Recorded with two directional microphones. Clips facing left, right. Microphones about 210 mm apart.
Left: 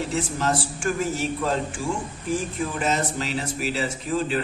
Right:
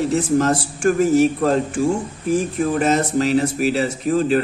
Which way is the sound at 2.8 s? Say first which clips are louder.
Right 7 dB; 45° right (ahead or behind).